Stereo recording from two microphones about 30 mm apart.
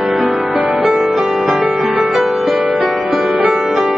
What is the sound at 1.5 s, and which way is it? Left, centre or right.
Music, right.